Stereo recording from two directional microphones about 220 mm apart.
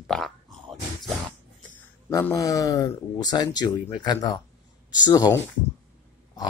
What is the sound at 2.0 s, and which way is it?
Speech, 15° left (ahead or behind).